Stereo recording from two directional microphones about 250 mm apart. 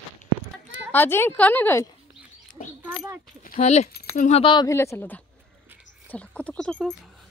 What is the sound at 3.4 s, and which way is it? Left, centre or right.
Speech, left.